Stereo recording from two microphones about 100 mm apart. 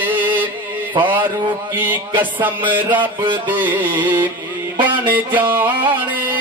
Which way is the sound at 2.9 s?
50° right (ahead or behind).